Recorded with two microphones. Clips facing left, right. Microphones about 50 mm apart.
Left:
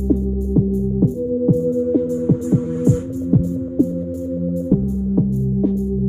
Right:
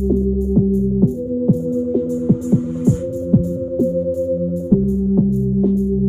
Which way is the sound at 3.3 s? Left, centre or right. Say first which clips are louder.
Right 1 dB; centre.